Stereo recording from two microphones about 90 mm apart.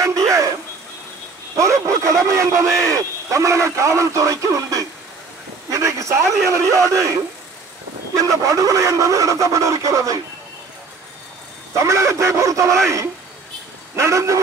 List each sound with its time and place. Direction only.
0.0 s a sound: 35° right (ahead or behind)
1.6 s a man's voice: 40° right (ahead or behind)
5.7 s a sound: 35° right (ahead or behind)
6.5 s speech: 35° right (ahead or behind)
8.2 s speech: 35° right (ahead or behind)
11.7 s speech: 35° right (ahead or behind)
13.9 s speech: 35° right (ahead or behind)